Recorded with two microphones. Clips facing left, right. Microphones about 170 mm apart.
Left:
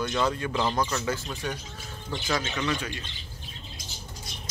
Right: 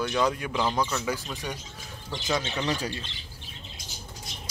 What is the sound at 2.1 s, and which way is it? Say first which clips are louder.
Speech: even; 25° right (ahead or behind).